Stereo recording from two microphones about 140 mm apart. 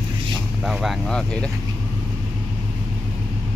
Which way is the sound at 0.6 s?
Centre (ahead or behind).